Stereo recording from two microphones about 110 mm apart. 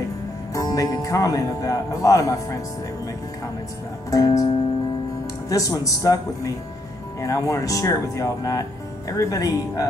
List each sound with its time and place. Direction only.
0.6 s speech: 30° left (ahead or behind)
4.1 s speech: 30° left (ahead or behind)
5.5 s speech: 30° left (ahead or behind)